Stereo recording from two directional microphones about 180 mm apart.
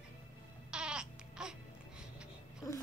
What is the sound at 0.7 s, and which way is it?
Baby cry, 5° right (ahead or behind).